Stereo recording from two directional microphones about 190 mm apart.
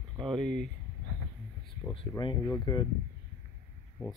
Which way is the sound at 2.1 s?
20° left (ahead or behind).